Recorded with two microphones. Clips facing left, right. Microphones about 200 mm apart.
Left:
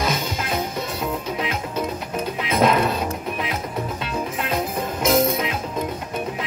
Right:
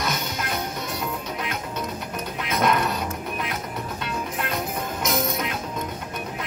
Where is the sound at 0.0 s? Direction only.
25° left (ahead or behind).